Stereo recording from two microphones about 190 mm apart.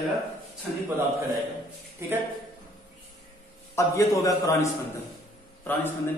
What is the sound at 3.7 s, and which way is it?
A man's voice, 15° left (ahead or behind).